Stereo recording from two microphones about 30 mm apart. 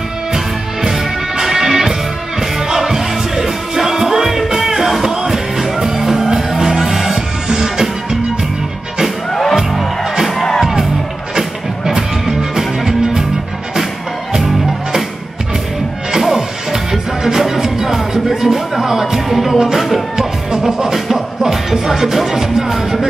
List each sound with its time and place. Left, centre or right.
1.4 s music: centre
9.3 s music: centre
12.3 s music: centre
14.3 s music: right
16.1 s music: centre
19.2 s music: centre
20.2 s music: centre